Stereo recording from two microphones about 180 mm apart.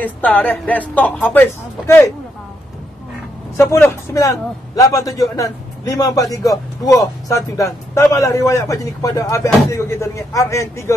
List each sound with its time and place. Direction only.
0.0 s a man's voice: 10° left (ahead or behind)
3.5 s a man's voice: 15° left (ahead or behind)
7.2 s a man's voice: 20° left (ahead or behind)